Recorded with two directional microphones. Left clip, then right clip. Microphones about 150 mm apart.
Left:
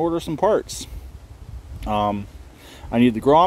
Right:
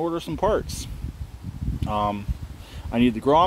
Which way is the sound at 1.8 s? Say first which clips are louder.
Left 3 dB; 40° left (ahead or behind).